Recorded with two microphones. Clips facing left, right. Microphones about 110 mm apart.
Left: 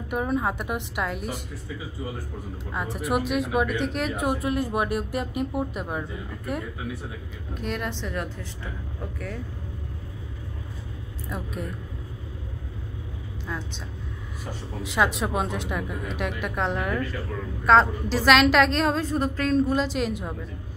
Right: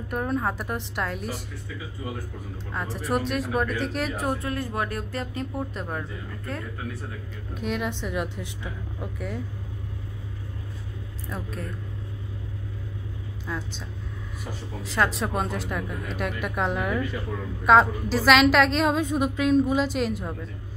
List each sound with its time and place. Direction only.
0.1 s a woman's voice: 5° left (ahead or behind)
2.7 s a woman's voice: 5° left (ahead or behind)
4.4 s speech: 25° left (ahead or behind)
7.5 s a woman's voice: 5° right (ahead or behind)
11.2 s a woman's voice: 5° left (ahead or behind)
13.5 s a woman's voice: centre (ahead or behind)
15.1 s a woman's voice: centre (ahead or behind)